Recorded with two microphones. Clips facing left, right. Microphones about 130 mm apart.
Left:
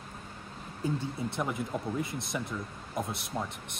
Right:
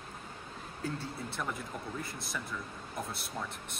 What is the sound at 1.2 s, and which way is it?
Speech, 20° left (ahead or behind).